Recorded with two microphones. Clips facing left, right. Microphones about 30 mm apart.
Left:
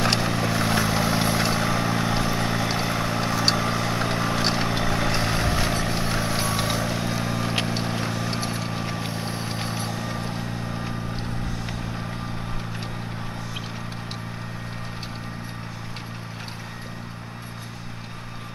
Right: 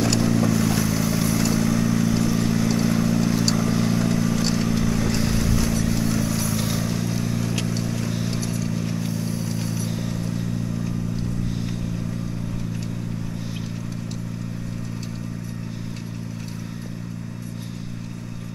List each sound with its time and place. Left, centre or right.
0.0 s vehicle: left